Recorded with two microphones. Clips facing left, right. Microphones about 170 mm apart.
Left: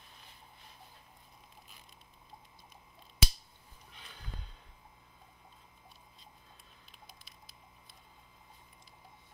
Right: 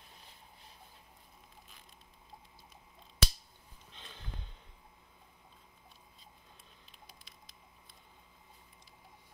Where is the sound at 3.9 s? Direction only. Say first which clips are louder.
Right 1 dB; 25° right (ahead or behind).